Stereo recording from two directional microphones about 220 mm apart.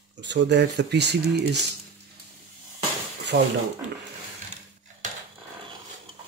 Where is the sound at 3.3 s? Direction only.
45° right (ahead or behind).